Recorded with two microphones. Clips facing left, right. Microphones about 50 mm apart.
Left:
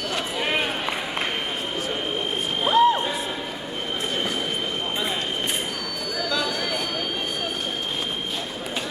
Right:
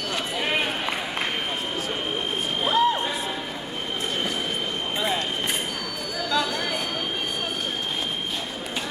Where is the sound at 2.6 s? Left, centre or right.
Centre.